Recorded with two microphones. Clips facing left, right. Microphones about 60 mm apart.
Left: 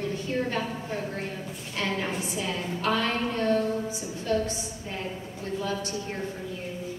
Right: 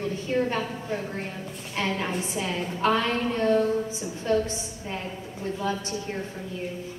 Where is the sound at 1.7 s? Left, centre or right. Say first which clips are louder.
Right 2 dB; right.